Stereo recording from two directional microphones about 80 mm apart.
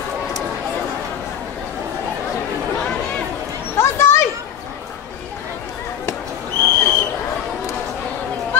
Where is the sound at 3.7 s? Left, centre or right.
Left.